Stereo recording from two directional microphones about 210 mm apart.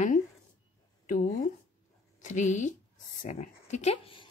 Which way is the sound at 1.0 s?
40° left (ahead or behind).